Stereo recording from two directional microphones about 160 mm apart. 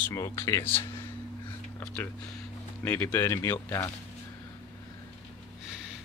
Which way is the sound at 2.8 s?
15° left (ahead or behind).